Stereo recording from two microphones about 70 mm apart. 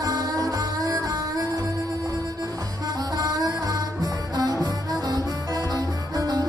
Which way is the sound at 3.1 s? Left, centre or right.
Right.